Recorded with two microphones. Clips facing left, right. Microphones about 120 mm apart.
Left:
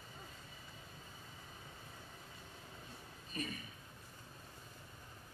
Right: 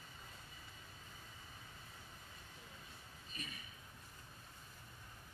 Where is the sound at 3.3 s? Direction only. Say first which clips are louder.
Left 9 dB; 45° left (ahead or behind).